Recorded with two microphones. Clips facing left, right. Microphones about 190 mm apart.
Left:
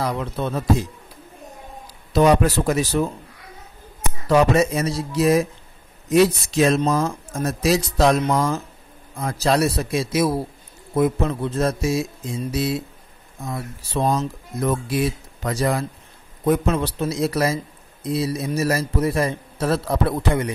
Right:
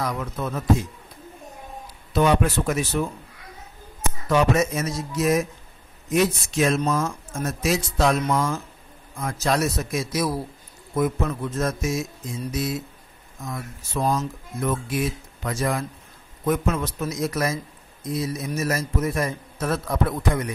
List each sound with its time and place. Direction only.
0.0 s speech: 30° left (ahead or behind)
2.1 s a man's voice: 40° left (ahead or behind)
4.3 s a man's voice: 35° left (ahead or behind)